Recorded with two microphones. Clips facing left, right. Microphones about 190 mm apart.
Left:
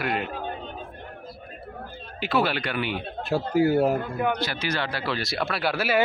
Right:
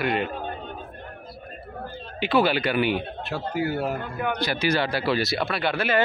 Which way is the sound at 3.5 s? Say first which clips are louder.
Left 6 dB; 40° left (ahead or behind).